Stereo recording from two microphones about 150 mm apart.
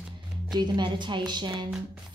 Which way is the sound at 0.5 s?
30° right (ahead or behind).